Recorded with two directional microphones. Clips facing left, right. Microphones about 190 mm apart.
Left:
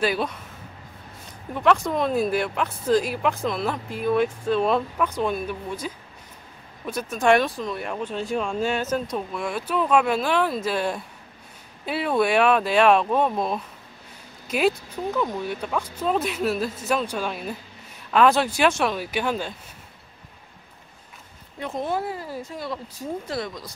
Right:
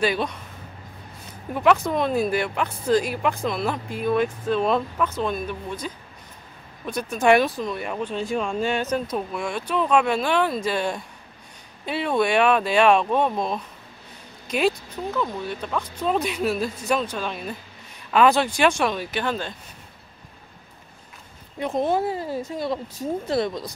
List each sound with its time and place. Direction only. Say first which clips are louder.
0.0 s speech: right 1 dB; 5° left (ahead or behind)
1.5 s speech: right 1 dB; 5° right (ahead or behind); by 19.5 s 10° left (ahead or behind)
21.5 s speech: right 4 dB; 20° right (ahead or behind)